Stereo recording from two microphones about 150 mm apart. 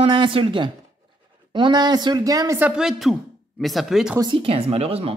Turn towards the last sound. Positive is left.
turn(degrees=-40)  # may be behind; listen again after turning